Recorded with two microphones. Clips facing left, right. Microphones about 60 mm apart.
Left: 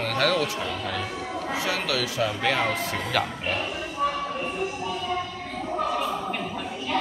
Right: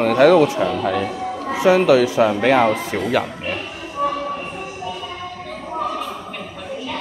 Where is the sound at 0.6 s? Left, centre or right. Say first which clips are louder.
Right 10 dB; right.